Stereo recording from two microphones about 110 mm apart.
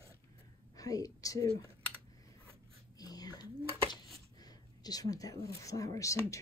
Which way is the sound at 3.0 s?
35° left (ahead or behind).